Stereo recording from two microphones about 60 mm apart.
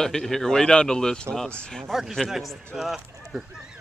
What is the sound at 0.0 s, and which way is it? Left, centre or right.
Speech, centre.